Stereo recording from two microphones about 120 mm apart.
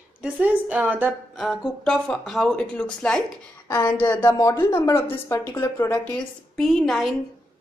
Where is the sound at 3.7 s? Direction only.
20° left (ahead or behind).